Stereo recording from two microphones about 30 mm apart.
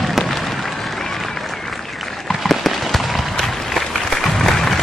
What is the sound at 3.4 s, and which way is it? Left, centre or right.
Applause, centre.